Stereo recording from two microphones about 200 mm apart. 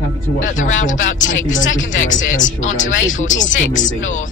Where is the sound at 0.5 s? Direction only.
40° left (ahead or behind).